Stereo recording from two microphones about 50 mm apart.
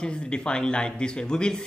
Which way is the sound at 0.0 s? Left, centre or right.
Centre.